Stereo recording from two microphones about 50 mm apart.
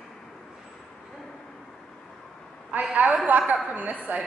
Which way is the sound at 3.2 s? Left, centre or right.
Right.